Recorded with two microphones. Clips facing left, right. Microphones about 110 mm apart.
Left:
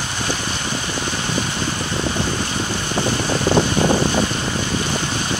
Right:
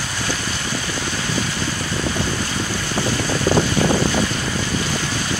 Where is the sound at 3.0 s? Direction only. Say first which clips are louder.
Left 1 dB; 20° left (ahead or behind).